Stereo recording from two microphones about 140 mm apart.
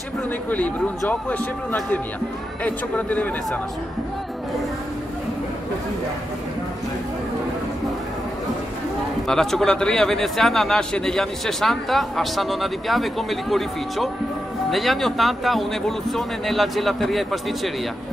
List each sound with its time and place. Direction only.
0.5 s a man's voice: 10° left (ahead or behind)
9.3 s a man's voice: 5° left (ahead or behind)